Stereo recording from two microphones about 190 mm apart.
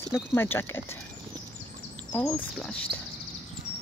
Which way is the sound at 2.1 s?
5° left (ahead or behind).